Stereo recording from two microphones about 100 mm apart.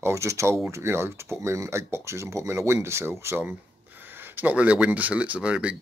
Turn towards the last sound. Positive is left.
turn(degrees=-10)  # may be behind; listen again after turning